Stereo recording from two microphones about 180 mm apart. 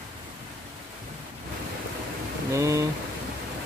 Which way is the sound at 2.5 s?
15° right (ahead or behind).